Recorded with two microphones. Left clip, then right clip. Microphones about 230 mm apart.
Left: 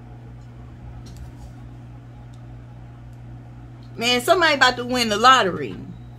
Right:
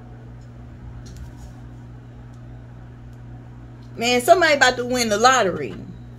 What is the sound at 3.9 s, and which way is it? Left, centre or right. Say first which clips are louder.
Speech: right 3 dB; centre.